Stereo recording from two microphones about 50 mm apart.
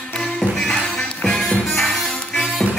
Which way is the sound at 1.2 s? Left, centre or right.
Centre.